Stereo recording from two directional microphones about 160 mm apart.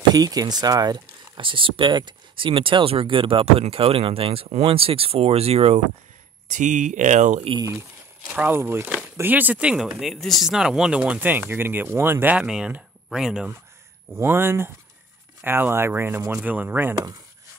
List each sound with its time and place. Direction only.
0.1 s speech: 25° right (ahead or behind); by 5.8 s 40° right (ahead or behind)
6.5 s speech: 50° right (ahead or behind)
7.4 s speech: 30° right (ahead or behind)
8.3 s speech: 15° right (ahead or behind)
14.1 s speech: 15° right (ahead or behind)